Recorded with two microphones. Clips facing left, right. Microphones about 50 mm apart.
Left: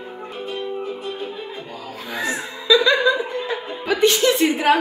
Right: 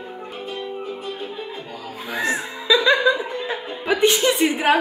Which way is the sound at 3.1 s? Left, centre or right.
Centre.